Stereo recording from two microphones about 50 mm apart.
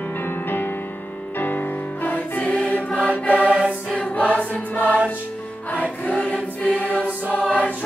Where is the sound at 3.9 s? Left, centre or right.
Left.